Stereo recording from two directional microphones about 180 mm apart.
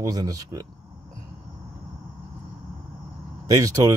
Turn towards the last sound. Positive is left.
turn(degrees=-15)  # may be behind; listen again after turning